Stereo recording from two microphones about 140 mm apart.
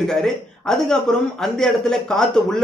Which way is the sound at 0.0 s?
5° left (ahead or behind).